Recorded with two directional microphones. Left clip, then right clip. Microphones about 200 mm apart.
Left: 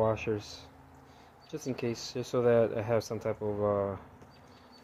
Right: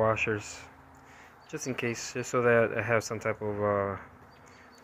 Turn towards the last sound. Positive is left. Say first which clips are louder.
# right 1 dB
turn(degrees=0)  # may be behind; listen again after turning